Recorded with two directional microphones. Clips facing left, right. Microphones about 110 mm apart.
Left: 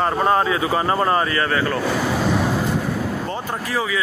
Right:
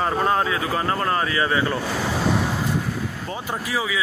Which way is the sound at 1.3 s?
15° right (ahead or behind).